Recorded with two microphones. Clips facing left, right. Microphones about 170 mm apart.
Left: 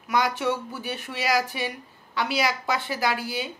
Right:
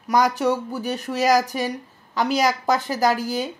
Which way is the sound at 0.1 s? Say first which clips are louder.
Right 5 dB; 40° right (ahead or behind).